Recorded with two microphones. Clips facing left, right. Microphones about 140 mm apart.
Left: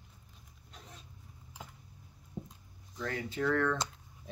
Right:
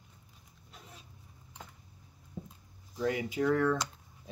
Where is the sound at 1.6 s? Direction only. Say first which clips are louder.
Left 1 dB; 10° left (ahead or behind).